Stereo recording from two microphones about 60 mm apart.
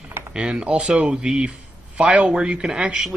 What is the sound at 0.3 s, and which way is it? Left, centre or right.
Speech, centre.